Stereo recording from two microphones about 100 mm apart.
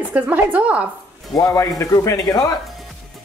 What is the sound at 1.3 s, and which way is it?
A man's voice, 35° left (ahead or behind).